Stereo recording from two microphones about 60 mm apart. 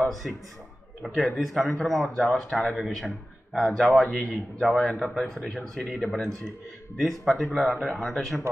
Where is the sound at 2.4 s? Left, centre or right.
Centre.